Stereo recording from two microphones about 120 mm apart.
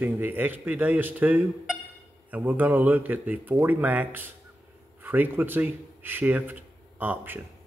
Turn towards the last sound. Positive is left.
turn(degrees=-15)  # may be behind; listen again after turning